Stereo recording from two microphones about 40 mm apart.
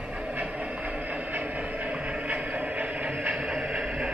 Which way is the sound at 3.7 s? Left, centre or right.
Right.